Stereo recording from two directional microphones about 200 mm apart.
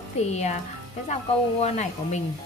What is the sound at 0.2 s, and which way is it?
Speech, 35° left (ahead or behind).